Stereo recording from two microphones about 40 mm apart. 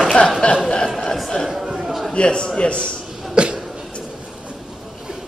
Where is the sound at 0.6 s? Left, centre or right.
Centre.